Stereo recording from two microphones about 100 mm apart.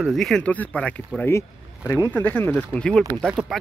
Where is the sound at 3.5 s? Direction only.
Centre (ahead or behind).